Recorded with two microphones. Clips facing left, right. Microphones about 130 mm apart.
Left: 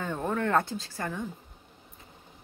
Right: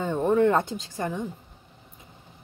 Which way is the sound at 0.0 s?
20° right (ahead or behind).